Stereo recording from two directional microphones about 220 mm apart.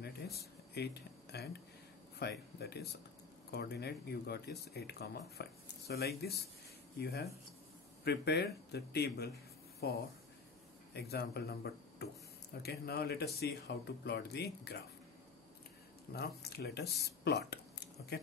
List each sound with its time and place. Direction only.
0.0 s speech: 45° left (ahead or behind)
16.1 s speech: 45° left (ahead or behind)